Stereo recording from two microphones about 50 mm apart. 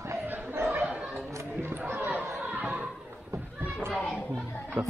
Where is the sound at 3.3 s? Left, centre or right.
Right.